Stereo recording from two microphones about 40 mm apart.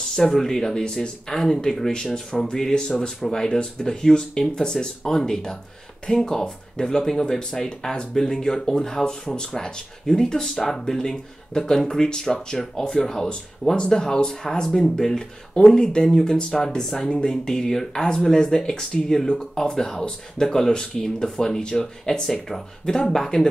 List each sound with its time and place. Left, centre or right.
0.2 s speech: centre
6.1 s speech: left
6.4 s speech: centre